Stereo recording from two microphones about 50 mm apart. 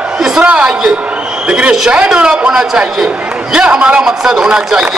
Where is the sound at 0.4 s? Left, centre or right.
Right.